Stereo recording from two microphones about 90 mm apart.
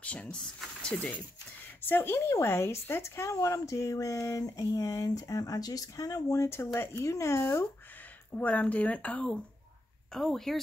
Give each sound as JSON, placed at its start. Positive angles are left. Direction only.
{"t": 0.0, "sound": "speech", "side_deg": 15}
{"t": 8.3, "sound": "speech", "side_deg": 20}
{"t": 10.1, "sound": "speech", "side_deg": 5}